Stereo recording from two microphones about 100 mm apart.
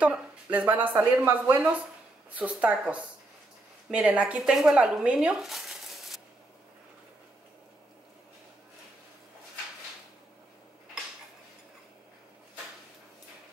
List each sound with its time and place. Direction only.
0.0 s speech: 15° right (ahead or behind)
3.9 s speech: 10° right (ahead or behind)